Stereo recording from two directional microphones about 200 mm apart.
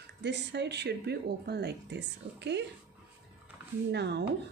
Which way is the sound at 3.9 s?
60° right (ahead or behind).